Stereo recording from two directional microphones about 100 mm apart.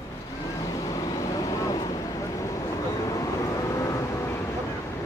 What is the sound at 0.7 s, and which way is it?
Vehicle, 35° left (ahead or behind).